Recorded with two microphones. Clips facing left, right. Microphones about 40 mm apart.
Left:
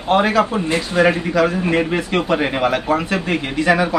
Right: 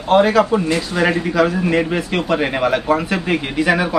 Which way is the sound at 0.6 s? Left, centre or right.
Left.